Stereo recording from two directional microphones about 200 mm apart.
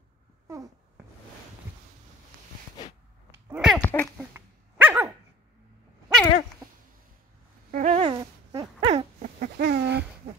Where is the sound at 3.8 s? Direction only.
10° left (ahead or behind).